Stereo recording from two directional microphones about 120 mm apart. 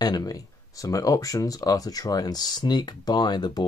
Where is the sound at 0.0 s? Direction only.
35° left (ahead or behind).